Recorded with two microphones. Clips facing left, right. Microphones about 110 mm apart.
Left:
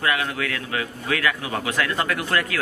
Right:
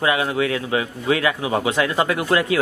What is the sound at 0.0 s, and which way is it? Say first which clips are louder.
A man's voice: right 5 dB; 20° right (ahead or behind).